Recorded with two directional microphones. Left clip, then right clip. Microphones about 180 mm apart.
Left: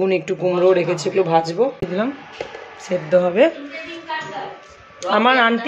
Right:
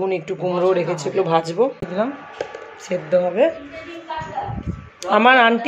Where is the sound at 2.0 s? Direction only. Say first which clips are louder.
Right 1 dB; 10° left (ahead or behind).